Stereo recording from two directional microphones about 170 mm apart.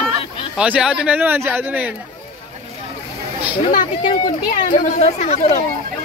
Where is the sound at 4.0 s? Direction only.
30° left (ahead or behind).